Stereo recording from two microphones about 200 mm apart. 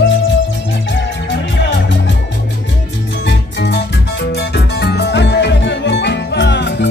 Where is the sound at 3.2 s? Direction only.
55° left (ahead or behind).